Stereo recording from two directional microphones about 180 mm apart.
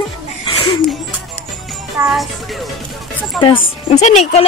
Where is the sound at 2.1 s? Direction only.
Centre (ahead or behind).